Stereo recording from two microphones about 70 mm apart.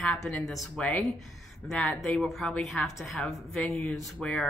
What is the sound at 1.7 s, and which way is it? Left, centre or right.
Speech, centre.